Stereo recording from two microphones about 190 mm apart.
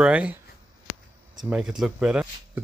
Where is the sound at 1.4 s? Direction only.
5° right (ahead or behind).